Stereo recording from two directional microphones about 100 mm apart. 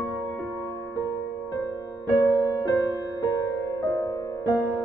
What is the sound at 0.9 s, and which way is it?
Music, 35° left (ahead or behind).